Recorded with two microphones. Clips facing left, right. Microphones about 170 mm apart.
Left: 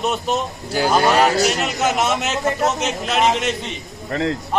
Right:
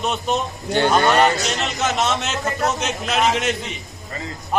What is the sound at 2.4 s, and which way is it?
Speech, 20° left (ahead or behind).